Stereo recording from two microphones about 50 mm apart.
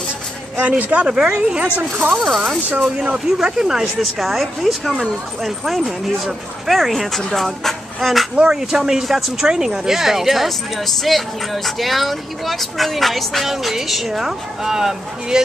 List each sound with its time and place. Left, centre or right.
0.6 s speech: right
1.0 s speech: centre
2.1 s speech: centre
3.0 s speech: centre
3.8 s speech: centre
7.4 s music: centre
8.4 s speech: centre